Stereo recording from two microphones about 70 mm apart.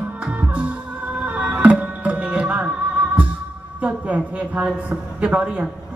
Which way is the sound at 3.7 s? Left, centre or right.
Right.